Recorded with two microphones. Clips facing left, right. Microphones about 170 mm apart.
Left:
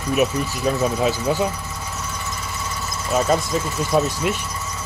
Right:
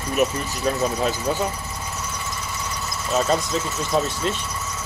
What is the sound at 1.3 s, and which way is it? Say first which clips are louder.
Speech: left 2 dB; 15° left (ahead or behind).